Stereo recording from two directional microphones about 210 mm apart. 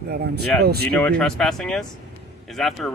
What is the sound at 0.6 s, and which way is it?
Speech, 50° right (ahead or behind).